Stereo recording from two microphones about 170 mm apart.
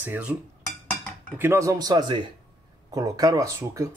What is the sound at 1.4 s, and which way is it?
Speech, 15° right (ahead or behind).